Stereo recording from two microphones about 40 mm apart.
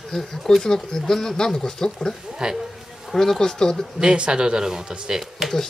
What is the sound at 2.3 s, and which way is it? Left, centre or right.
Speech, centre.